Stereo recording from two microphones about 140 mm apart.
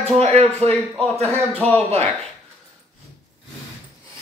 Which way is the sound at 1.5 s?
10° left (ahead or behind).